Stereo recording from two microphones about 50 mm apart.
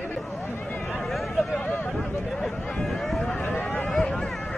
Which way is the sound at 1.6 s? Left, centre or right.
Left.